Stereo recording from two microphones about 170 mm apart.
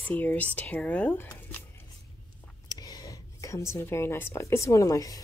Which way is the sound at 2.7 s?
20° left (ahead or behind).